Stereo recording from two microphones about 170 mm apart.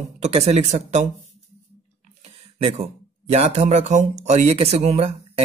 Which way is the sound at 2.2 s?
40° right (ahead or behind).